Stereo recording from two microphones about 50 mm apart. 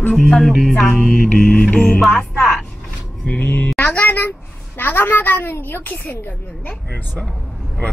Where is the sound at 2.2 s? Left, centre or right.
Centre.